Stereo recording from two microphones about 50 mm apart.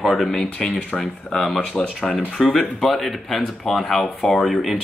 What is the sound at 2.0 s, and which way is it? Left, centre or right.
Speech, centre.